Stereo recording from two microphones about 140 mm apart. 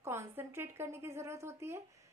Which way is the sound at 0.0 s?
20° right (ahead or behind).